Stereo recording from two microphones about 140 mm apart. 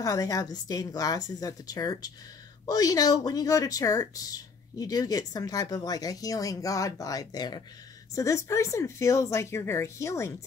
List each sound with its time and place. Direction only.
0.0 s speech: 25° left (ahead or behind)